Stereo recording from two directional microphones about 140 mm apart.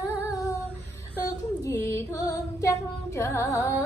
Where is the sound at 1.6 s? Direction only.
20° left (ahead or behind).